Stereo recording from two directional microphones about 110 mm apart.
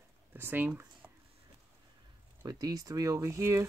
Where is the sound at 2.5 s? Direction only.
35° right (ahead or behind).